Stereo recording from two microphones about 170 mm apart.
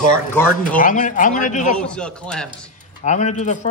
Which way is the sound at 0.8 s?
50° left (ahead or behind).